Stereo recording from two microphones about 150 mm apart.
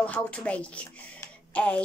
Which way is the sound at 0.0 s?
10° left (ahead or behind).